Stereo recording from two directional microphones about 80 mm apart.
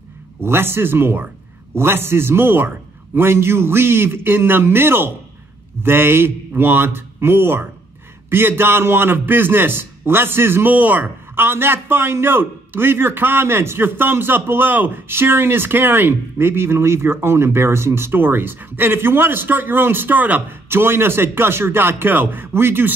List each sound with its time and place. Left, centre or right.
0.4 s a man's voice: right